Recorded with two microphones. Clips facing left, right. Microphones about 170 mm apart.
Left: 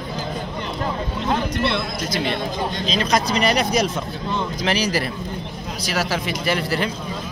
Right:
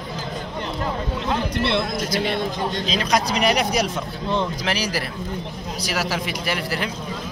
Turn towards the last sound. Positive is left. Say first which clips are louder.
# left 4 dB
turn(degrees=-10)  # may be behind; listen again after turning